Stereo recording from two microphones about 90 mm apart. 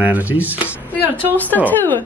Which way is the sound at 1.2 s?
20° left (ahead or behind).